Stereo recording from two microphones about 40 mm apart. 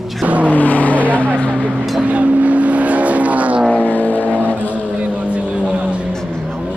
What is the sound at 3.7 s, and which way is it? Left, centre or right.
Vehicle, left.